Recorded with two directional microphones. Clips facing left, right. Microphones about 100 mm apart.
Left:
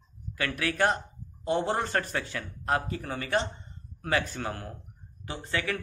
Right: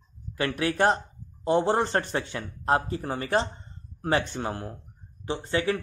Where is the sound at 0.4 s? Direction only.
25° right (ahead or behind).